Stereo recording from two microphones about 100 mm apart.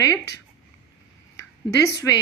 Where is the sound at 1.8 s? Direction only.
35° left (ahead or behind).